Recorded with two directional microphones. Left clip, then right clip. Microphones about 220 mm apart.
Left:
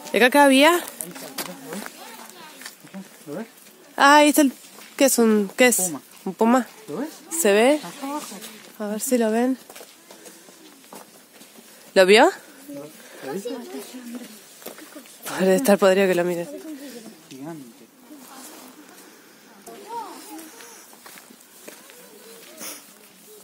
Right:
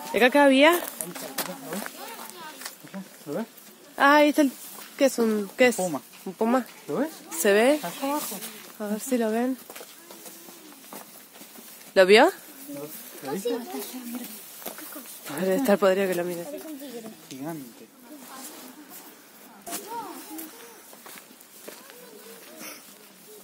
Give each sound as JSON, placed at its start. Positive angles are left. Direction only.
{"t": 0.1, "sound": "speech", "side_deg": 40}
{"t": 1.3, "sound": "a sound", "side_deg": -5}
{"t": 3.3, "sound": "speech", "side_deg": -45}
{"t": 3.9, "sound": "speech", "side_deg": 45}
{"t": 5.8, "sound": "speech", "side_deg": -50}
{"t": 6.2, "sound": "speech", "side_deg": 55}
{"t": 7.3, "sound": "a woman's voice", "side_deg": 30}
{"t": 11.9, "sound": "speech", "side_deg": 45}
{"t": 13.3, "sound": "speech", "side_deg": -50}
{"t": 15.2, "sound": "speech", "side_deg": 50}